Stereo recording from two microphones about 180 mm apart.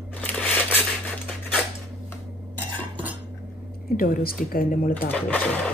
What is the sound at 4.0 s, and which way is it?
Speech, 55° left (ahead or behind).